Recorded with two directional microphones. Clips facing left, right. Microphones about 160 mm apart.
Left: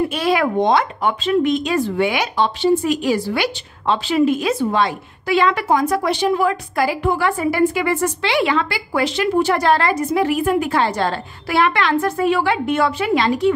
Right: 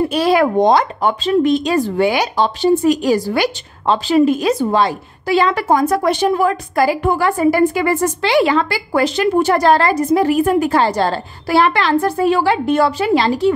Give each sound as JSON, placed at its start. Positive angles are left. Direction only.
{"t": 0.1, "sound": "speech", "side_deg": -35}